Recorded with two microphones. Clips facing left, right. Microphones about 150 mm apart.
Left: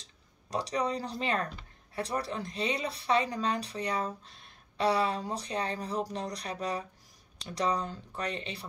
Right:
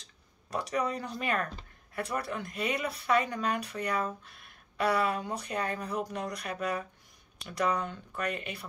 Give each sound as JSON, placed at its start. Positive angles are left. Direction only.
{"t": 0.7, "sound": "speech", "side_deg": 35}